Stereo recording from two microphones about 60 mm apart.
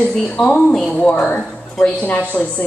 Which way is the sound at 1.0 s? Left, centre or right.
Left.